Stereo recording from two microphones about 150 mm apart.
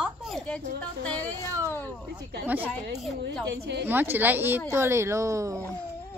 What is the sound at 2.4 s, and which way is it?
Speech, 10° right (ahead or behind).